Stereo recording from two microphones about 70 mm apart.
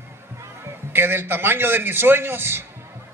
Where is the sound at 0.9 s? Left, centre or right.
Right.